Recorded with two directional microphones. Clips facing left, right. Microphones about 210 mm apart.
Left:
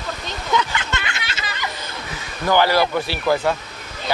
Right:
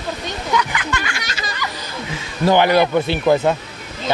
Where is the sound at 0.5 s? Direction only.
25° left (ahead or behind).